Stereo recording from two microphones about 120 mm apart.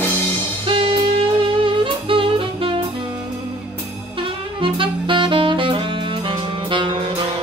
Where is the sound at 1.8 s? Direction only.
45° right (ahead or behind).